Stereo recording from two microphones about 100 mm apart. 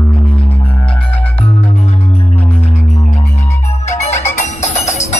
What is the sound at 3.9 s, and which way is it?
Music, 25° left (ahead or behind).